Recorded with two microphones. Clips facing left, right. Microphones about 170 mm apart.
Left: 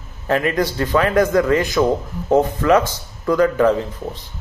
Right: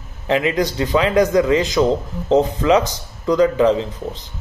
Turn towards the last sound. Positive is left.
turn(degrees=-20)  # may be behind; listen again after turning